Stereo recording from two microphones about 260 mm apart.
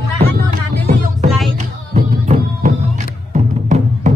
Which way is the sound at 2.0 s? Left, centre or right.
Right.